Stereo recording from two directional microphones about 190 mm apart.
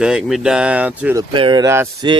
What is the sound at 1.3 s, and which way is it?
Speech, 25° right (ahead or behind).